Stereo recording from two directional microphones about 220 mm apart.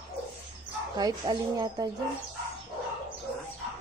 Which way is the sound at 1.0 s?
20° right (ahead or behind).